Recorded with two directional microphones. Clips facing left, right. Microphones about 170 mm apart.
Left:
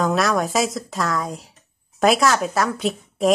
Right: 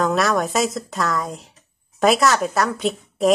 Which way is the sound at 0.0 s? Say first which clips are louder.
Even; centre (ahead or behind).